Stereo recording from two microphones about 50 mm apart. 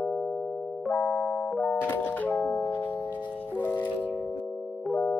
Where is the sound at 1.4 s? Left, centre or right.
Centre.